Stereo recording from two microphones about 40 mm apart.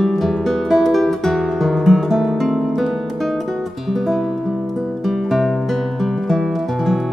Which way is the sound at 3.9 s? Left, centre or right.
Centre.